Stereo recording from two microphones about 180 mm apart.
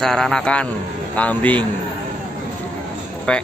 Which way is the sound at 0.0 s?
5° left (ahead or behind).